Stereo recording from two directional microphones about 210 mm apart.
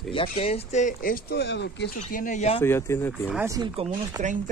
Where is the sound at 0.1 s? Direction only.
25° left (ahead or behind); by 1.9 s 55° left (ahead or behind).